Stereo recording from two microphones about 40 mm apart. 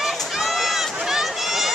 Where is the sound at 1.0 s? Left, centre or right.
Centre.